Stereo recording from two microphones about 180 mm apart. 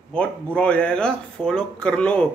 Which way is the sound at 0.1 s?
5° left (ahead or behind).